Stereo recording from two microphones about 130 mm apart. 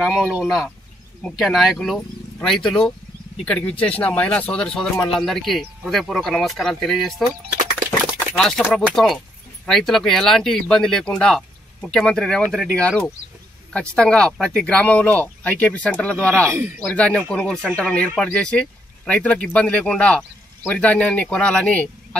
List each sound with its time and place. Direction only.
0.3 s speech: 5° right (ahead or behind)
8.4 s speech: 5° left (ahead or behind)
16.4 s speech: 20° right (ahead or behind)
16.9 s speech: 10° left (ahead or behind)